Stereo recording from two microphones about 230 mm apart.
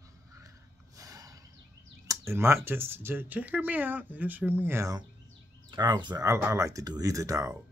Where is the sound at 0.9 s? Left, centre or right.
Centre.